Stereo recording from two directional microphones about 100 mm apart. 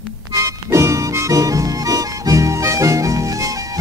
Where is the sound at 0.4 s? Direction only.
30° right (ahead or behind).